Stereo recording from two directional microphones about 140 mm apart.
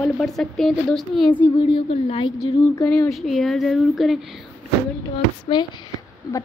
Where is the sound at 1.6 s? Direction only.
40° left (ahead or behind).